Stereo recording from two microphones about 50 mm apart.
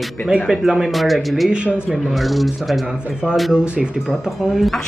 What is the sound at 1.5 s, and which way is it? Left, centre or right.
Speech, centre.